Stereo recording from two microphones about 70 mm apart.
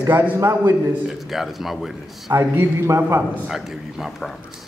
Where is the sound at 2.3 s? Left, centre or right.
Right.